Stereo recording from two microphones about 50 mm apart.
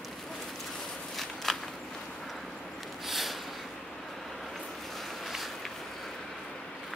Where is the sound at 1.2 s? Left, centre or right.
Centre.